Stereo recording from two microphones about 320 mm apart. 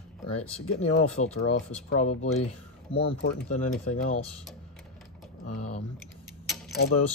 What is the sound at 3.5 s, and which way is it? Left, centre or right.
Speech, left.